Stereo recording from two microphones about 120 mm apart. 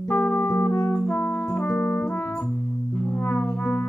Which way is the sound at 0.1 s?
15° left (ahead or behind).